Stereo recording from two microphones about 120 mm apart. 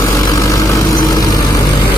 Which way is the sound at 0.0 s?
30° left (ahead or behind).